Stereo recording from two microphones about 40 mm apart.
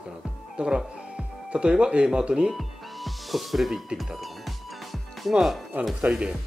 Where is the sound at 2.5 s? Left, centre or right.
Centre.